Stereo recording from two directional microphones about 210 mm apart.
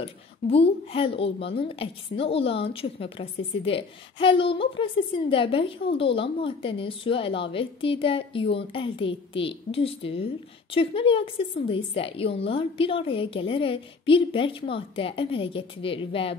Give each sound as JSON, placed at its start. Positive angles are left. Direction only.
{"t": 0.0, "sound": "a woman's voice", "side_deg": 25}